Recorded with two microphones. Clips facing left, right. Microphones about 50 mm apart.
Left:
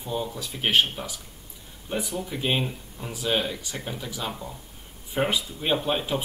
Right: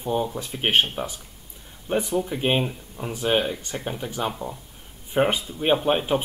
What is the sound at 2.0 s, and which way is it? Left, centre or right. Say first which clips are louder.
Speech: right 7 dB; right.